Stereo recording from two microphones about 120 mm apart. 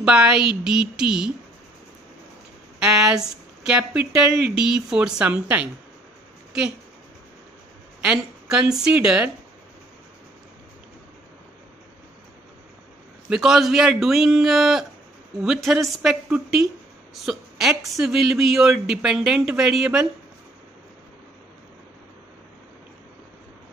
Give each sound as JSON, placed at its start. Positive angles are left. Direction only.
{"t": 0.0, "sound": "speech", "side_deg": -5}
{"t": 2.8, "sound": "speech", "side_deg": -5}
{"t": 8.0, "sound": "speech", "side_deg": -5}
{"t": 13.3, "sound": "speech", "side_deg": -5}